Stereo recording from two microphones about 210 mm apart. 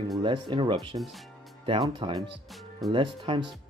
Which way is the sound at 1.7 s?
20° right (ahead or behind).